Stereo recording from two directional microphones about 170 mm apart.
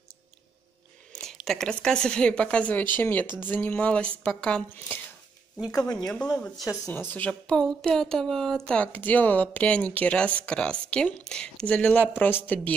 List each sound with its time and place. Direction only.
1.1 s a woman's voice: centre (ahead or behind)